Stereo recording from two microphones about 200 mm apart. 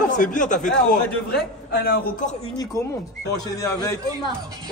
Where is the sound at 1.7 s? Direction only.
55° left (ahead or behind).